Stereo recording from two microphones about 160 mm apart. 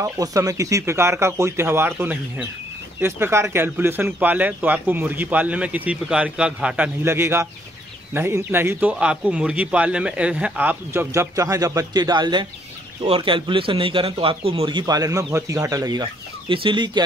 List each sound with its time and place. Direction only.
0.0 s a man's voice: 20° right (ahead or behind)